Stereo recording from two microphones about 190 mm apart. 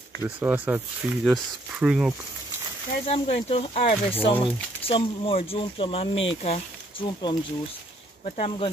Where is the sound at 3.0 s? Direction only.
30° left (ahead or behind).